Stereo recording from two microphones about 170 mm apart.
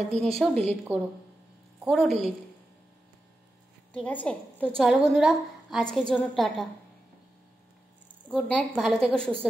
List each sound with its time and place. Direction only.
0.2 s a woman's voice: centre (ahead or behind)
0.9 s a woman's voice: 10° right (ahead or behind)
3.9 s a woman's voice: 10° left (ahead or behind)
8.3 s a woman's voice: 5° left (ahead or behind)